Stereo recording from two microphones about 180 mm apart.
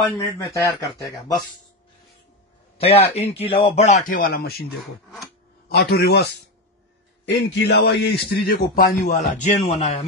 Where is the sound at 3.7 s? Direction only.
45° left (ahead or behind).